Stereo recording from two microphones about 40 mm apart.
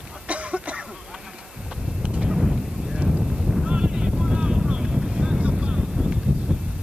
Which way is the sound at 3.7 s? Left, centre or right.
Right.